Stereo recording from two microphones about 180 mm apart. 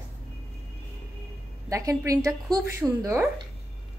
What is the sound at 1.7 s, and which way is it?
A woman's voice, 20° right (ahead or behind).